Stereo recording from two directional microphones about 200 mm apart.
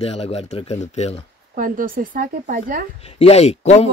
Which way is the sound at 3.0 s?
30° left (ahead or behind).